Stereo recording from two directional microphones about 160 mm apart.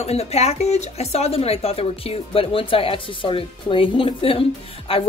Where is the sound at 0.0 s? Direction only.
40° left (ahead or behind).